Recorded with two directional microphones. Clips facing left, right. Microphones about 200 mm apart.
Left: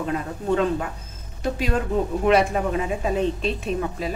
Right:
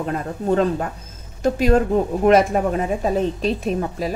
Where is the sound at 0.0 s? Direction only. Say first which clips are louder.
Right 3 dB; 40° right (ahead or behind).